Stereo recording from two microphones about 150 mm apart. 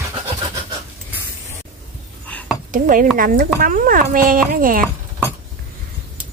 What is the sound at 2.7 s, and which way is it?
Speech, 65° right (ahead or behind).